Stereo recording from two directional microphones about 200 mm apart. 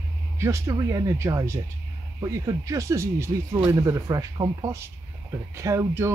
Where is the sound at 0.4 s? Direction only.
15° right (ahead or behind).